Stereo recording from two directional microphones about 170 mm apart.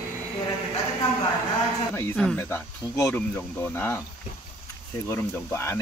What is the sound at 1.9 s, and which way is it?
Speech, 10° left (ahead or behind).